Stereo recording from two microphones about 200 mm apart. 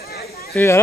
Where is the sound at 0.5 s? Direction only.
15° left (ahead or behind).